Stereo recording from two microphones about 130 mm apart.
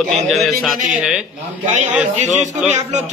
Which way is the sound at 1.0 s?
10° right (ahead or behind).